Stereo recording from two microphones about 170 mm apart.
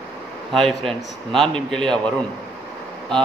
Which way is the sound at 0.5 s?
Centre (ahead or behind).